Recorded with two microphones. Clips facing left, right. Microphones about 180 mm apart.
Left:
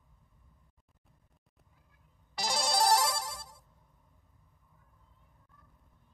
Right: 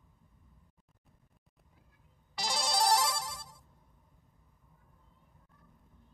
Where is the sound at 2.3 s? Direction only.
50° left (ahead or behind).